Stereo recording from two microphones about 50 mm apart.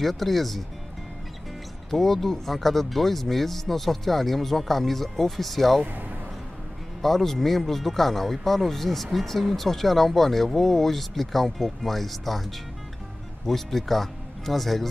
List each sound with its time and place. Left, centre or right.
0.0 s speech: centre
1.9 s speech: centre
5.9 s speech: right
7.0 s speech: centre